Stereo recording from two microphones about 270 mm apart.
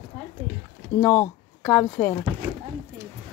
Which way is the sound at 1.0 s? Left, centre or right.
Centre.